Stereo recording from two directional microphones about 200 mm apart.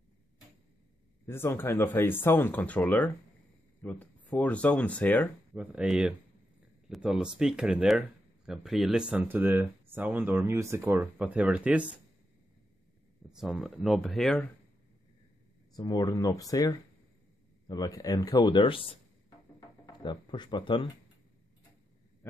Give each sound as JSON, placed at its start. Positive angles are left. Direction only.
{"t": 1.2, "sound": "speech", "side_deg": 10}
{"t": 5.5, "sound": "speech", "side_deg": -5}
{"t": 13.3, "sound": "speech", "side_deg": -5}
{"t": 15.7, "sound": "a man's voice", "side_deg": 20}
{"t": 20.0, "sound": "a man's voice", "side_deg": 20}